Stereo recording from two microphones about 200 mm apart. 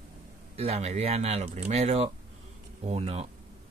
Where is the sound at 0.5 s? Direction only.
30° right (ahead or behind).